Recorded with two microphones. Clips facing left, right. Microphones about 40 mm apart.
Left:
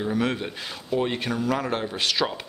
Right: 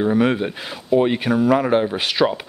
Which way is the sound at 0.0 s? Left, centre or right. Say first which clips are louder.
Right 8 dB; right.